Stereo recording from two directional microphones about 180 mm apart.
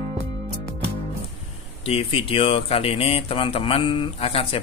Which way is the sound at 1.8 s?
30° left (ahead or behind).